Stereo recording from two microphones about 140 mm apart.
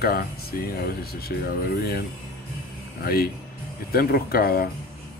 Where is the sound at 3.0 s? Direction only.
90° left.